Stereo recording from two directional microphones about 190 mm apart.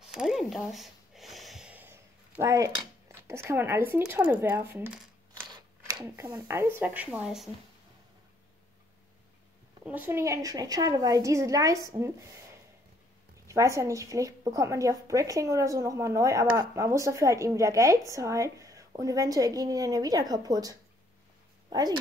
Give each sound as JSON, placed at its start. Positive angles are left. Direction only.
{"t": 0.0, "sound": "a sound", "side_deg": -5}
{"t": 5.9, "sound": "a woman's voice", "side_deg": -20}
{"t": 9.8, "sound": "a woman's voice", "side_deg": -10}
{"t": 13.5, "sound": "a woman's voice", "side_deg": -15}